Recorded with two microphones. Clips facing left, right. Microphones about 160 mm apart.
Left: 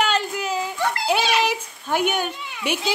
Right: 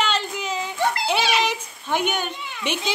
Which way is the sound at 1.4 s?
5° left (ahead or behind).